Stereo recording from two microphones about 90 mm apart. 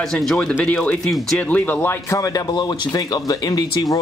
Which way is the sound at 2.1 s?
40° left (ahead or behind).